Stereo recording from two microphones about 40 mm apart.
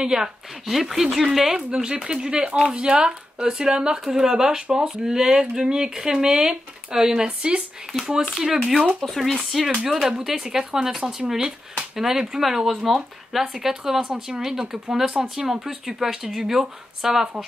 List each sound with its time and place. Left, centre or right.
0.0 s speech: centre
0.7 s speech: centre
1.5 s speech: right
9.0 s speech: centre
10.0 s speech: centre